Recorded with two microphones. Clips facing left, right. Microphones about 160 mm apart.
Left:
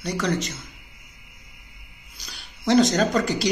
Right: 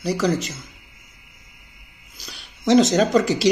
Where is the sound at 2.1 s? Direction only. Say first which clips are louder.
Right 3 dB; centre (ahead or behind).